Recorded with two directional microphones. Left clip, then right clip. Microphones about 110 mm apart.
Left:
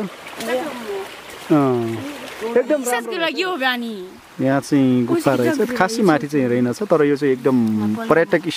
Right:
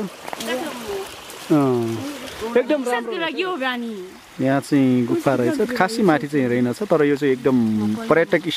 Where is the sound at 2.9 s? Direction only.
35° left (ahead or behind).